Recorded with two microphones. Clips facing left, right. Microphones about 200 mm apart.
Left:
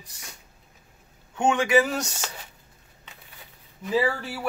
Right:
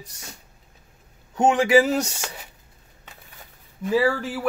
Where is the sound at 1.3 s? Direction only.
35° right (ahead or behind).